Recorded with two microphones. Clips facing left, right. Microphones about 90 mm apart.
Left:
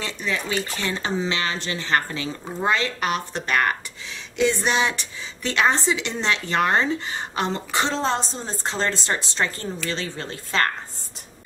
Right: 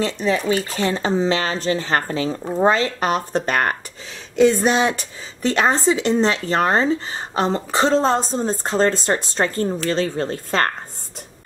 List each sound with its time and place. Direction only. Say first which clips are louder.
0.0 s a woman's voice: right 8 dB; 40° right (ahead or behind)